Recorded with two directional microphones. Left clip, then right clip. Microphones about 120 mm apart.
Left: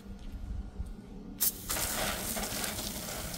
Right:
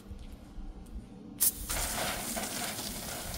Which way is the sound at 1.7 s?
45° left (ahead or behind).